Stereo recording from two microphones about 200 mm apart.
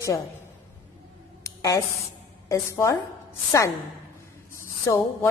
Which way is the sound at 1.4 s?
15° left (ahead or behind).